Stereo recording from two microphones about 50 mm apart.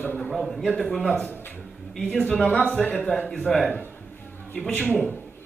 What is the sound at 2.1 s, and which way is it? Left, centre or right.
Speech, centre.